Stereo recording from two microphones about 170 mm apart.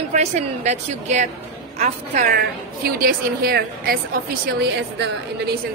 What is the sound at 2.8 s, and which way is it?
A woman's voice, 60° right (ahead or behind).